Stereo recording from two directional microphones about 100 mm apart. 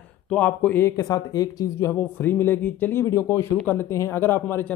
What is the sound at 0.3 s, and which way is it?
Speech, 15° left (ahead or behind).